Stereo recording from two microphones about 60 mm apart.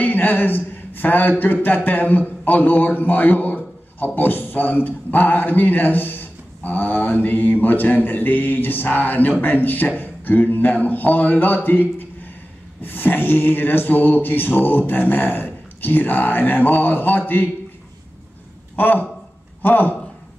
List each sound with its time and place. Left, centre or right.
0.0 s a sound: left
1.4 s a man's voice: left
12.8 s a man's voice: left
18.8 s a man's voice: left